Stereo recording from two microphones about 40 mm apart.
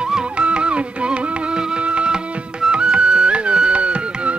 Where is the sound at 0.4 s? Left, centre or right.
Right.